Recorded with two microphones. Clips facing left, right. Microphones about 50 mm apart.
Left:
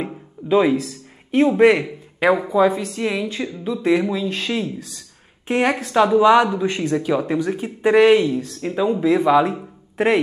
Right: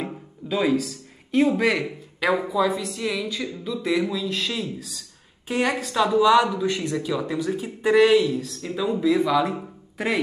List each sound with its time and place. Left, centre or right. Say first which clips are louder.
0.0 s music: left 3 dB; left
1.6 s speech: left 8 dB; left